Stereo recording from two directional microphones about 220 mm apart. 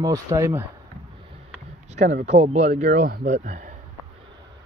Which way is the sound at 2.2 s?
30° right (ahead or behind).